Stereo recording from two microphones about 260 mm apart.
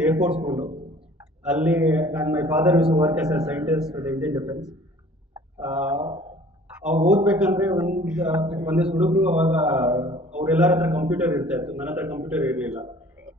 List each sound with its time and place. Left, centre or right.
0.0 s a man's voice: centre
5.9 s a sound: right
7.1 s a man's voice: centre